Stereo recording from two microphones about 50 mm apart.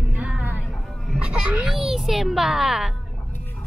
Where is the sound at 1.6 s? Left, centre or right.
Centre.